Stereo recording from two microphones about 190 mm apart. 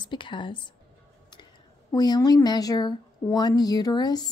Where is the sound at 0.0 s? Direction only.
25° left (ahead or behind).